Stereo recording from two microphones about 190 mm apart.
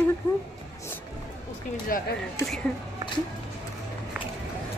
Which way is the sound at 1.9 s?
50° left (ahead or behind).